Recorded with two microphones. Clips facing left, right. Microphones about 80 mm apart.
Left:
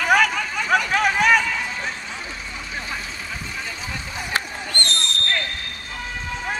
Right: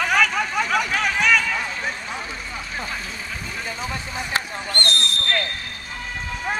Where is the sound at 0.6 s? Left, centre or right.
Centre.